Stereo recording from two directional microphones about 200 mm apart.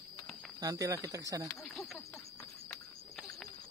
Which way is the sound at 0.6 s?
15° right (ahead or behind).